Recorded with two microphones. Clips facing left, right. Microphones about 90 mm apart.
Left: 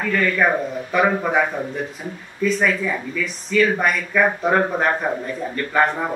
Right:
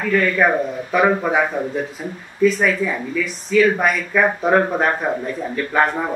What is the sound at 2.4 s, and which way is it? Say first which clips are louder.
Speech: right 3 dB; centre (ahead or behind).